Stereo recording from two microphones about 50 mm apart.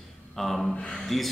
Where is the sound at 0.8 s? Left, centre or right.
Centre.